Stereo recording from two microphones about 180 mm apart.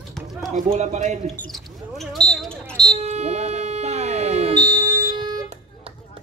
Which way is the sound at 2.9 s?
35° right (ahead or behind).